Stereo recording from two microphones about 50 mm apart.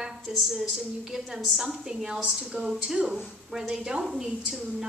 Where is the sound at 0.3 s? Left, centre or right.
Centre.